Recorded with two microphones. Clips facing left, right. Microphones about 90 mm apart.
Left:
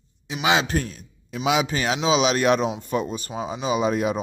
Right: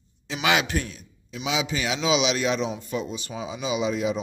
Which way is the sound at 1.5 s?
50° left (ahead or behind).